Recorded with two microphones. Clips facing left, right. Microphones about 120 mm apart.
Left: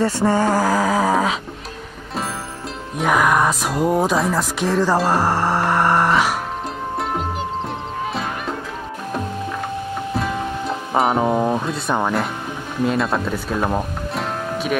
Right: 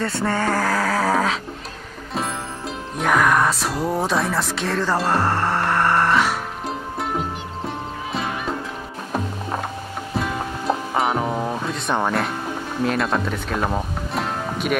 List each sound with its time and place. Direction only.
0.0 s speech: 15° left (ahead or behind)
3.0 s speech: 10° left (ahead or behind)
7.6 s music: centre (ahead or behind)
11.1 s speech: 20° left (ahead or behind)
11.6 s speech: centre (ahead or behind)